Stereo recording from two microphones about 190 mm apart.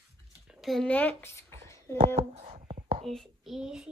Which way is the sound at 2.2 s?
35° right (ahead or behind).